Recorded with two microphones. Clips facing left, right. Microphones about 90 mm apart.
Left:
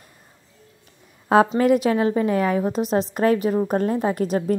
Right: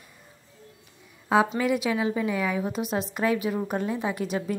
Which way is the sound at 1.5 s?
45° left (ahead or behind).